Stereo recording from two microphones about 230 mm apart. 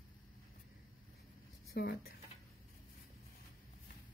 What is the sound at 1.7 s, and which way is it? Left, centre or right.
Speech, left.